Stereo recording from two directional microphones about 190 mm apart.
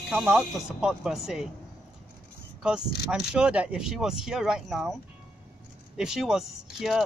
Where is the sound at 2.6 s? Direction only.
5° right (ahead or behind).